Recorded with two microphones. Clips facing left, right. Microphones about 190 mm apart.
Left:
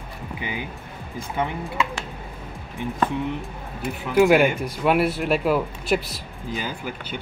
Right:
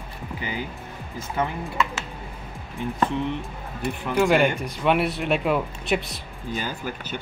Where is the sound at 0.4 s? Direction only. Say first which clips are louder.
Even; 15° left (ahead or behind).